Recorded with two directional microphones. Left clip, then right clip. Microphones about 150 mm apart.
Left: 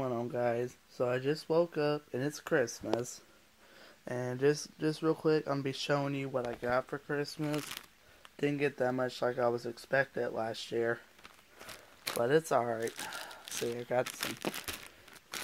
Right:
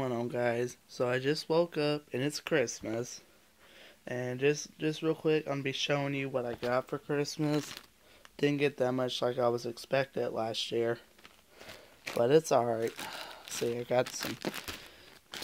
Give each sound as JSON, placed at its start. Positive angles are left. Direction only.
{"t": 0.0, "sound": "speech", "side_deg": -20}
{"t": 2.0, "sound": "speech", "side_deg": -5}
{"t": 4.0, "sound": "speech", "side_deg": 15}
{"t": 6.3, "sound": "speech", "side_deg": -15}
{"t": 6.9, "sound": "speech", "side_deg": -40}
{"t": 7.5, "sound": "speech", "side_deg": -10}
{"t": 8.4, "sound": "speech", "side_deg": -40}
{"t": 12.2, "sound": "speech", "side_deg": -50}
{"t": 14.0, "sound": "speech", "side_deg": -10}
{"t": 14.4, "sound": "speech", "side_deg": -35}
{"t": 15.3, "sound": "crumpling", "side_deg": 0}